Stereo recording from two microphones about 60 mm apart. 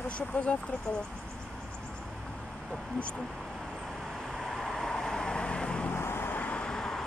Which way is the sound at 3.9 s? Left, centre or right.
Centre.